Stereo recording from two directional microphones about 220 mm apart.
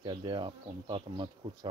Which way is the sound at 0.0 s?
20° right (ahead or behind).